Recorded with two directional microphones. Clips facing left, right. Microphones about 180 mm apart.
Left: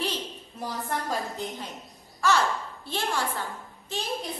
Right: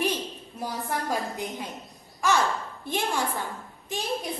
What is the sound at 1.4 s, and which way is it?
A woman's voice, 15° right (ahead or behind).